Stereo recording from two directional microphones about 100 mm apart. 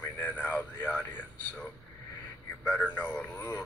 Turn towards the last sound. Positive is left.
turn(degrees=15)  # may be behind; listen again after turning